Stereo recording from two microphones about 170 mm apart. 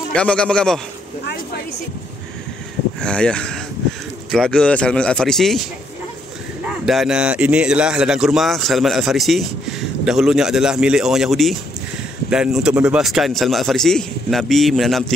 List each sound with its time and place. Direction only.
0.1 s a man's voice: 5° left (ahead or behind)
1.2 s speech: 65° left (ahead or behind)
3.0 s a man's voice: 5° left (ahead or behind)
6.9 s a man's voice: 5° right (ahead or behind)